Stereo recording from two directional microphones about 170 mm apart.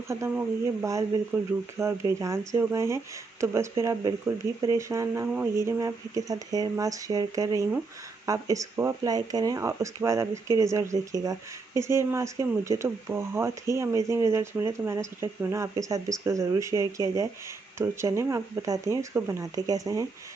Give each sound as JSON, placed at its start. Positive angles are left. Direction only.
{"t": 0.1, "sound": "speech", "side_deg": -15}